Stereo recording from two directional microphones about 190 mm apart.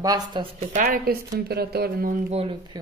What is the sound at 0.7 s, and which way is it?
Speech, 45° right (ahead or behind).